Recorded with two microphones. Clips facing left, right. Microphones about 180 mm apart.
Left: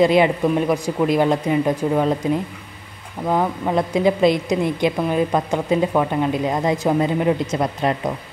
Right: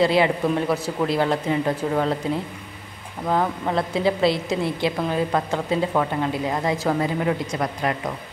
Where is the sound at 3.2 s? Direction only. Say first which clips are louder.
Left 2 dB; 10° left (ahead or behind).